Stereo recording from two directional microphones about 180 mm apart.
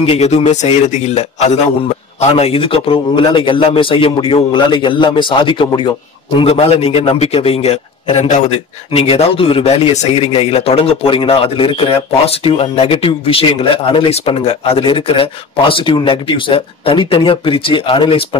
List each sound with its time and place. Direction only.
0.0 s speech: 35° left (ahead or behind)